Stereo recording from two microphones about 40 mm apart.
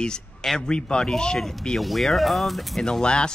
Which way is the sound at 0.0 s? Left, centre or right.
Centre.